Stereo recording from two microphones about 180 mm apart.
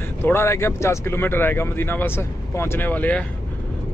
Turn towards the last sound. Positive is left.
turn(degrees=10)  # may be behind; listen again after turning